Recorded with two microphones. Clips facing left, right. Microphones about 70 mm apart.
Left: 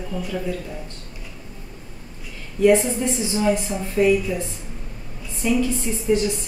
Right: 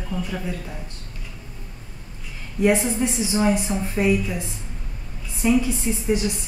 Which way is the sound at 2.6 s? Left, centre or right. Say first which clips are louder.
Left 3 dB; right.